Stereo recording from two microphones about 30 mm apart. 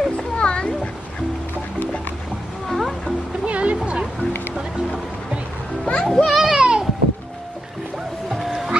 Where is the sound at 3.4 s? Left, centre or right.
Right.